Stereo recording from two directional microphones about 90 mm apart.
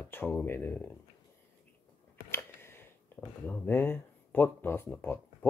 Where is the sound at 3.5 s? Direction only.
20° left (ahead or behind).